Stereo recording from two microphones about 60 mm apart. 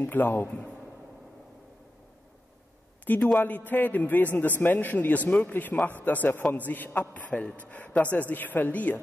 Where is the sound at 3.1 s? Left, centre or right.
Left.